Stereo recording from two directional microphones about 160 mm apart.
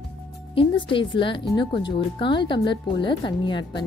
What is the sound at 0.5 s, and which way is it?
Speech, 30° left (ahead or behind).